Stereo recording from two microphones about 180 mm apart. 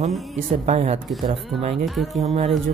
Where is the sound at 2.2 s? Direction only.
35° right (ahead or behind).